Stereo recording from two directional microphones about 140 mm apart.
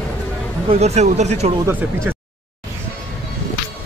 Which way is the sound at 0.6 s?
50° right (ahead or behind).